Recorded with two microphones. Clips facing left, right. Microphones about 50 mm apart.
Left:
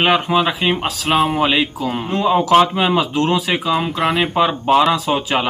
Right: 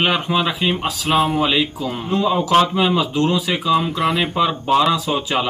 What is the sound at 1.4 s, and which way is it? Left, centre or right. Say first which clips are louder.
Speech: left 2 dB; left.